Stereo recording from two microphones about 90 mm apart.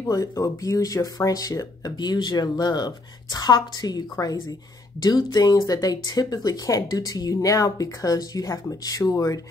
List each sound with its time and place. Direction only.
0.0 s speech: 40° left (ahead or behind)